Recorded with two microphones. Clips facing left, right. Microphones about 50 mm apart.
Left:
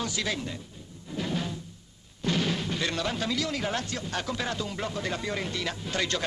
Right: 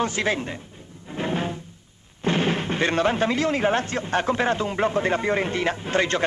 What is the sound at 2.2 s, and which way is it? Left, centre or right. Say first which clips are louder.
Speech: right 6 dB; right.